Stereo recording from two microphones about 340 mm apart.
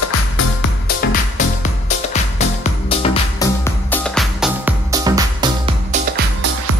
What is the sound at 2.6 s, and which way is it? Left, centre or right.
Music, centre.